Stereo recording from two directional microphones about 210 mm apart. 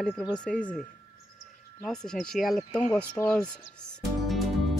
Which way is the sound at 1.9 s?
5° left (ahead or behind).